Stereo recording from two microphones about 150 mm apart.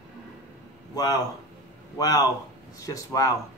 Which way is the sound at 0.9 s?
25° left (ahead or behind).